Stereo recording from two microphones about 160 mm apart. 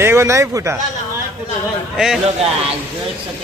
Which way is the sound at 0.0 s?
15° right (ahead or behind).